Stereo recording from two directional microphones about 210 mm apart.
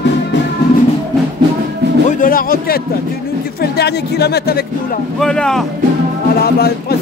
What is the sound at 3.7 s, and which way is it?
Speech, 50° left (ahead or behind).